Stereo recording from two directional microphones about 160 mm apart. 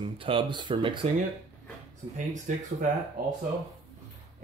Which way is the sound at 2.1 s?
50° right (ahead or behind).